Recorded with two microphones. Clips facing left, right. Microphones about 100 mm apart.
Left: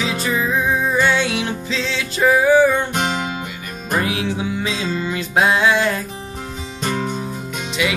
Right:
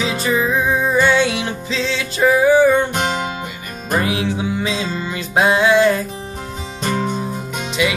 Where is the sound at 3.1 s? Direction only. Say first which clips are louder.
Right 1 dB; 30° right (ahead or behind).